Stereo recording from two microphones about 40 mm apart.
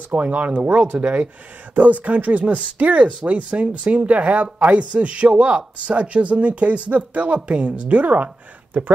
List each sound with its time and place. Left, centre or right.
0.1 s speech: right